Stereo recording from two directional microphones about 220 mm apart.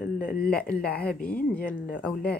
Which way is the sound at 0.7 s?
5° left (ahead or behind).